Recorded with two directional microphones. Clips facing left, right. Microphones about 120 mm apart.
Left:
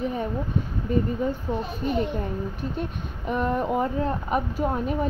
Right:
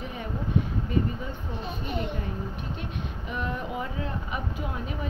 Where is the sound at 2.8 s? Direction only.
40° left (ahead or behind).